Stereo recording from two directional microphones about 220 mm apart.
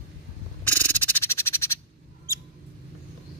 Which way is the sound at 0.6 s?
10° left (ahead or behind).